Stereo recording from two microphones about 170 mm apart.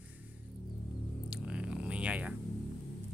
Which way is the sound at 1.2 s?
5° right (ahead or behind).